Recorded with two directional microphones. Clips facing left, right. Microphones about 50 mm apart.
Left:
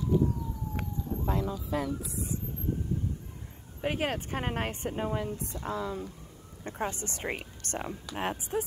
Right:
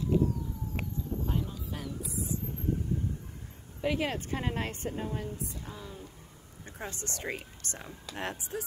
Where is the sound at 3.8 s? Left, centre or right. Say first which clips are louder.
Even; left.